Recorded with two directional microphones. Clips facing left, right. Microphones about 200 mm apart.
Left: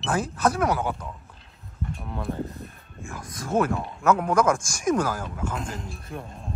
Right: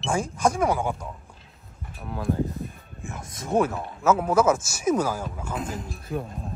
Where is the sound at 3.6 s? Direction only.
5° right (ahead or behind).